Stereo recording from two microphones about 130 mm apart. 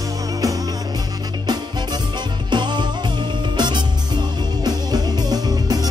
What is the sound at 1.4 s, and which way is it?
Music, 30° right (ahead or behind).